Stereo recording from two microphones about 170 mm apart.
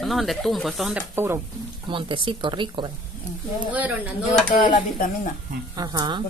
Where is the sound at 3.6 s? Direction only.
10° right (ahead or behind).